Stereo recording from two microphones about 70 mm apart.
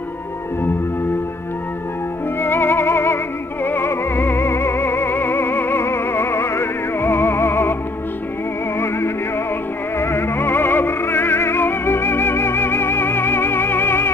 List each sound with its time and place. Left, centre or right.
2.4 s music: left
8.7 s music: left